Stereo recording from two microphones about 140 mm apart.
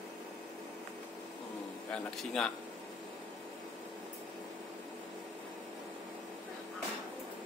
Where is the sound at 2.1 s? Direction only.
5° left (ahead or behind).